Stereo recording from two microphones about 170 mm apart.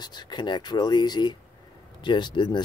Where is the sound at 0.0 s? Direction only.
25° left (ahead or behind).